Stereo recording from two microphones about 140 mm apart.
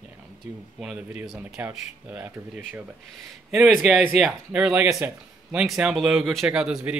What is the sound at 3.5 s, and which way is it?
Speech, centre (ahead or behind).